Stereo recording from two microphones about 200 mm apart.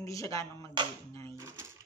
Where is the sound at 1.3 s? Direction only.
15° right (ahead or behind).